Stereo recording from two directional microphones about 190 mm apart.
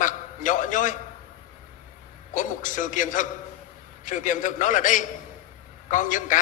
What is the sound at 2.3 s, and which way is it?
A man's voice, 45° left (ahead or behind).